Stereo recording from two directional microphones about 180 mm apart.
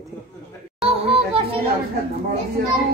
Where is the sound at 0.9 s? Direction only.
30° right (ahead or behind).